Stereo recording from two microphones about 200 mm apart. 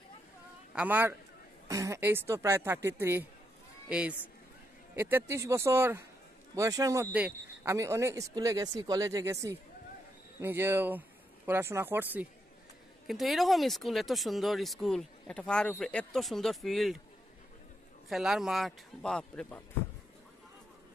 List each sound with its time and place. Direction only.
0.7 s speech: 10° right (ahead or behind)
4.9 s speech: 10° right (ahead or behind)
18.0 s speech: centre (ahead or behind)